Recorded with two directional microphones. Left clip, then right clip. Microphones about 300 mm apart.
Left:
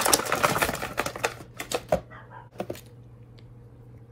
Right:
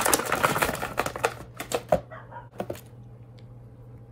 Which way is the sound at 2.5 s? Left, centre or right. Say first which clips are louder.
Even; centre.